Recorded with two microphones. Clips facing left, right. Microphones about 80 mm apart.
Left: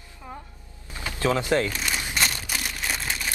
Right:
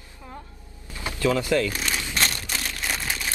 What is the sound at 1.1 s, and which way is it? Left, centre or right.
Speech, left.